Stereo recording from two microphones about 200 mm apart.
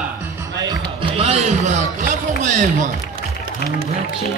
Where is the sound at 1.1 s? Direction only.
30° right (ahead or behind).